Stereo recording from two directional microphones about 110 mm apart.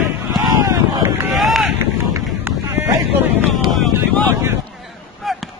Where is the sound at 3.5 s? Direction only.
Centre (ahead or behind).